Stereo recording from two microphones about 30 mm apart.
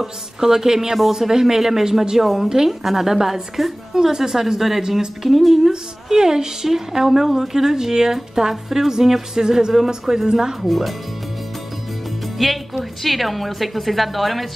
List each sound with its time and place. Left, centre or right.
0.0 s a woman's voice: centre
2.2 s a woman's voice: centre
6.0 s a woman's voice: centre
10.6 s a woman's voice: centre
12.4 s a woman's voice: centre